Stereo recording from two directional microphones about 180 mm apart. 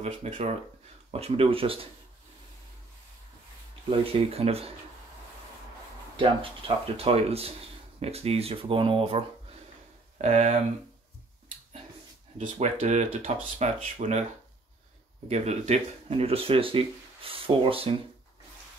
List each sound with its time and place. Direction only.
0.0 s speech: 35° right (ahead or behind)
3.9 s speech: 30° right (ahead or behind)
6.6 s speech: 30° right (ahead or behind)
10.2 s speech: 40° right (ahead or behind)
12.4 s speech: 40° right (ahead or behind)
15.2 s speech: 40° right (ahead or behind)